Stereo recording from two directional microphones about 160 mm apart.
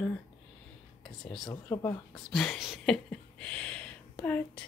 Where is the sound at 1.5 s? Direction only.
20° left (ahead or behind).